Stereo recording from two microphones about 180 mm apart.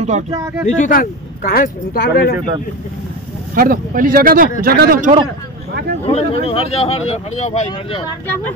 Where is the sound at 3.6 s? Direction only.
50° right (ahead or behind).